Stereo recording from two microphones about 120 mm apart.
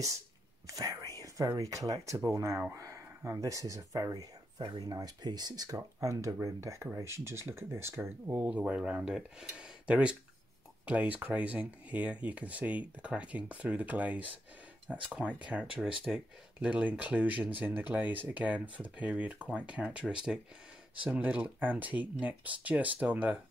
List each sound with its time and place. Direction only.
0.7 s whispering: 30° right (ahead or behind)
1.2 s speech: 25° right (ahead or behind)